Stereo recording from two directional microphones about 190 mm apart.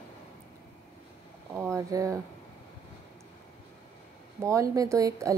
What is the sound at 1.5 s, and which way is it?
Speech, 15° right (ahead or behind).